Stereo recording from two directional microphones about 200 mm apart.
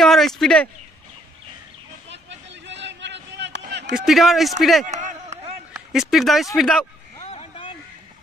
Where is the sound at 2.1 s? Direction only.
65° right (ahead or behind).